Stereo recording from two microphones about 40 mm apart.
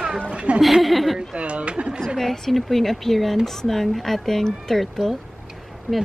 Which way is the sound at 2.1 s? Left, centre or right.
Centre.